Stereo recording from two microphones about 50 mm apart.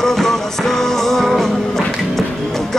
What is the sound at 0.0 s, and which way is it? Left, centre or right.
Music, centre.